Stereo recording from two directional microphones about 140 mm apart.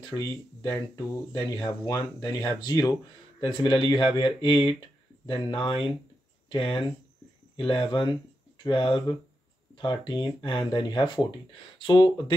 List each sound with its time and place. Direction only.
0.1 s speech: 25° left (ahead or behind)